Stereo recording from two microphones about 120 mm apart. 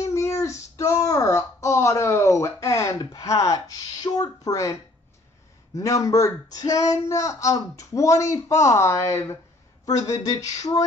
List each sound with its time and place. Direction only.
0.0 s a sound: 25° left (ahead or behind)
5.8 s speech: 25° left (ahead or behind)
9.8 s speech: 35° left (ahead or behind)